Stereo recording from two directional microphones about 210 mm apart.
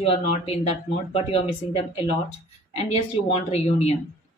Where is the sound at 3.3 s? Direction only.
30° left (ahead or behind).